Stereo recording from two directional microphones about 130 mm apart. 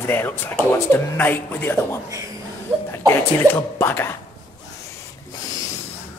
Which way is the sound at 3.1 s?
15° left (ahead or behind).